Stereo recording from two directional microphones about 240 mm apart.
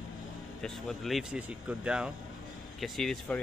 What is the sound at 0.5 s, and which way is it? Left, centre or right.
Speech, centre.